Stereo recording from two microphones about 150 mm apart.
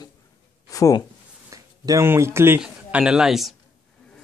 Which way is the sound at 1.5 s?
20° right (ahead or behind).